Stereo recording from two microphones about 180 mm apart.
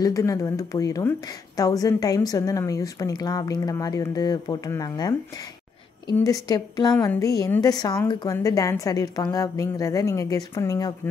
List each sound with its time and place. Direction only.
0.0 s a woman's voice: 20° left (ahead or behind)
6.1 s a woman's voice: 20° left (ahead or behind)